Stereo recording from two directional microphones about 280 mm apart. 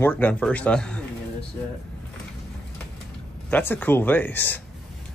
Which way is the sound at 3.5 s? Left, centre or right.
Centre.